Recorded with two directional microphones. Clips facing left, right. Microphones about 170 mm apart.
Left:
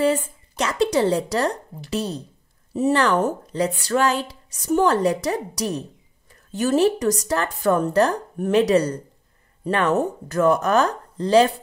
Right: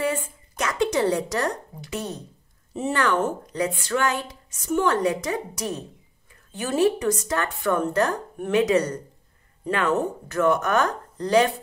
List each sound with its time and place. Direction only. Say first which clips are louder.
0.0 s speech: left 6 dB; 30° left (ahead or behind)
10.2 s speech: left 3 dB; 35° left (ahead or behind)